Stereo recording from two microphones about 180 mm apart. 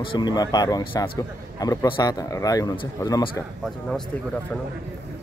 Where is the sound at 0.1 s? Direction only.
25° left (ahead or behind).